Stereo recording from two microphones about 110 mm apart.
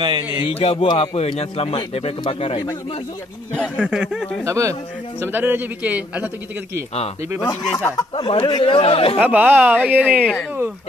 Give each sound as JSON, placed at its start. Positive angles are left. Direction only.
{"t": 0.0, "sound": "speech", "side_deg": -40}
{"t": 0.5, "sound": "a man's voice", "side_deg": 65}
{"t": 3.5, "sound": "a man's voice", "side_deg": -10}
{"t": 4.0, "sound": "speech", "side_deg": 0}
{"t": 4.5, "sound": "a man's voice", "side_deg": -25}
{"t": 8.2, "sound": "speech", "side_deg": 50}
{"t": 9.2, "sound": "a man's voice", "side_deg": -15}